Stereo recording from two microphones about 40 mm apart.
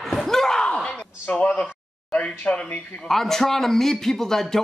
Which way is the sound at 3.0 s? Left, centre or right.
Centre.